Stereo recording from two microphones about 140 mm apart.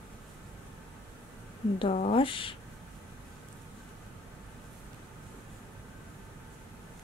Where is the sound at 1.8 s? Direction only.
45° left (ahead or behind).